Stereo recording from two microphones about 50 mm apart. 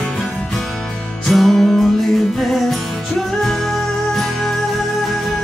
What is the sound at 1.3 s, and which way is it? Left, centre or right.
Music, centre.